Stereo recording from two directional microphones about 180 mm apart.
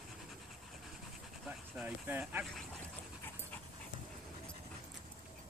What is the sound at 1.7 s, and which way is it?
Speech, 10° right (ahead or behind).